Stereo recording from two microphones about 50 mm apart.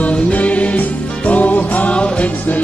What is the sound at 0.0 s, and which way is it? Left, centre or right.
Music, left.